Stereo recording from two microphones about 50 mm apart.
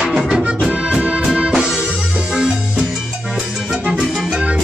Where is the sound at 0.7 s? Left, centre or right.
Right.